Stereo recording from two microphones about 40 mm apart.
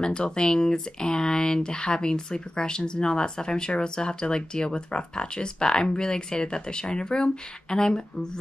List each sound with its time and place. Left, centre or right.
0.0 s speech: left